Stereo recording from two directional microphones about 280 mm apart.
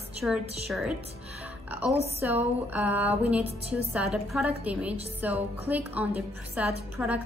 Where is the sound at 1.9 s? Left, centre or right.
Right.